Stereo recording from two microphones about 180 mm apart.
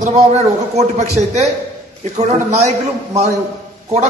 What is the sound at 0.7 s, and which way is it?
Speech, 40° right (ahead or behind).